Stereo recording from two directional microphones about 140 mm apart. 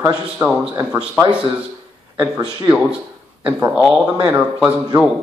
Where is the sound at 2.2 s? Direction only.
10° right (ahead or behind).